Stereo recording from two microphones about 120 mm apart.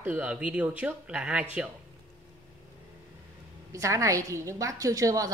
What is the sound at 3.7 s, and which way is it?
A woman's voice, 25° right (ahead or behind).